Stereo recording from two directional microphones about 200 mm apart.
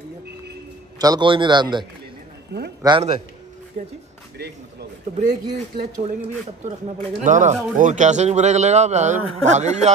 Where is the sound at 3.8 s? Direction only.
35° right (ahead or behind).